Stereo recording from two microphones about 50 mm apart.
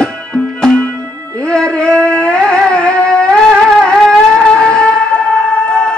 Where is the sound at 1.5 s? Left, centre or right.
Centre.